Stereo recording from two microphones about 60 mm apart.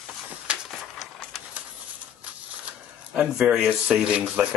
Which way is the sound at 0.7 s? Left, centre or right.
Centre.